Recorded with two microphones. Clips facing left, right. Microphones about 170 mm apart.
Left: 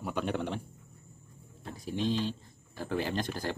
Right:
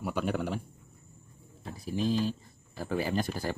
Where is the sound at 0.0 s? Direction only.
5° right (ahead or behind).